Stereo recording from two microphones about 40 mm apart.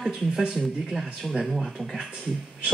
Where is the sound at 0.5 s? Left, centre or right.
Centre.